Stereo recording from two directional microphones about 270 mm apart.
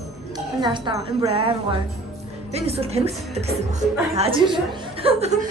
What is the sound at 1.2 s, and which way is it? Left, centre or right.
A woman's voice, centre.